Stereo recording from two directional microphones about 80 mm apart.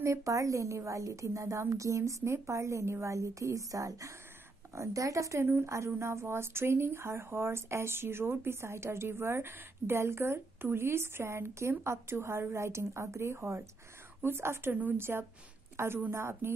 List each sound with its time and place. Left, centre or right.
0.0 s a woman's voice: right